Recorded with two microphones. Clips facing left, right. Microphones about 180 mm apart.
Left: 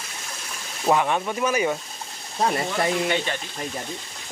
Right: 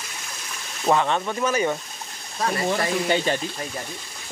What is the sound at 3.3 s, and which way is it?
Speech, 35° right (ahead or behind).